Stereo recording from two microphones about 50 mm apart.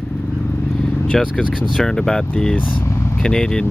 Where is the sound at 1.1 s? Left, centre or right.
Centre.